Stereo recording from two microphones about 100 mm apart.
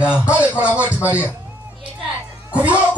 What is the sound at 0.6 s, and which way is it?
Speech, 15° right (ahead or behind).